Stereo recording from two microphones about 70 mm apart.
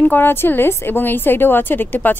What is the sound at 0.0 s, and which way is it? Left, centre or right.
Speech, left.